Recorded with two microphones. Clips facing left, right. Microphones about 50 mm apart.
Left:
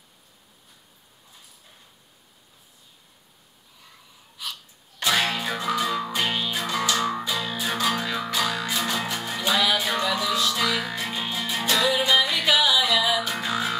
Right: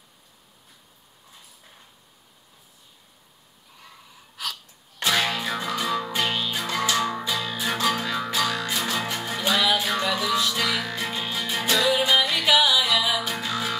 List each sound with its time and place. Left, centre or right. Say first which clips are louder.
4.4 s a sound: right 3 dB; right
5.1 s music: even; centre
13.4 s music: left 1 dB; centre